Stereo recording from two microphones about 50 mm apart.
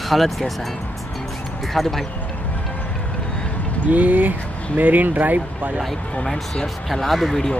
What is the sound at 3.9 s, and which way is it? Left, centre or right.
Speech, right.